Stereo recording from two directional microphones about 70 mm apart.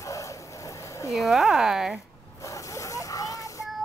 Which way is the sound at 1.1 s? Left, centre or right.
Centre.